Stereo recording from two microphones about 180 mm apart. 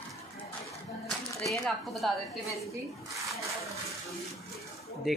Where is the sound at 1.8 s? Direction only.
Centre (ahead or behind).